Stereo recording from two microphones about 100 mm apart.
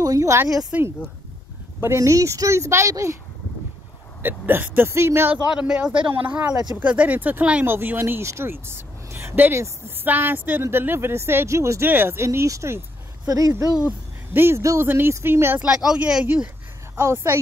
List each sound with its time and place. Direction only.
0.0 s a sound: 35° right (ahead or behind)
0.6 s speech: 10° right (ahead or behind)
1.8 s speech: 30° right (ahead or behind)
4.2 s speech: 20° right (ahead or behind)
5.5 s speech: 10° right (ahead or behind)
6.5 s speech: 40° right (ahead or behind)
6.8 s speech: 15° right (ahead or behind); by 13.7 s 35° right (ahead or behind)
14.3 s speech: 25° right (ahead or behind)
15.6 s speech: 5° right (ahead or behind)
16.9 s speech: 25° right (ahead or behind)